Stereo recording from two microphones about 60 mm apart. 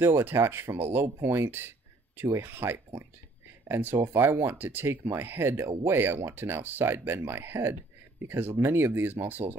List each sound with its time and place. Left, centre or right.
0.0 s speech: right
1.0 s speech: right